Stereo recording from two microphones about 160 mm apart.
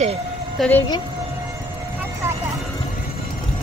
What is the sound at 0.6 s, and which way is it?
Speech, 10° left (ahead or behind).